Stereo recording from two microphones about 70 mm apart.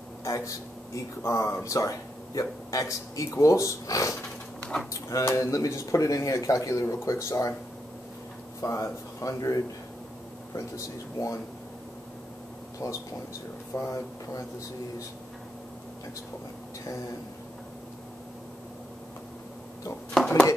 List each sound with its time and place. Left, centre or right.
0.2 s speech: left
5.3 s speech: left
8.5 s speech: left
12.8 s speech: left
20.2 s speech: centre